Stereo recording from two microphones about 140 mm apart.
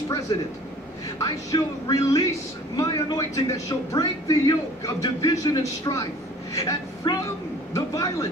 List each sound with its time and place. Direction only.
0.3 s speech: 35° left (ahead or behind)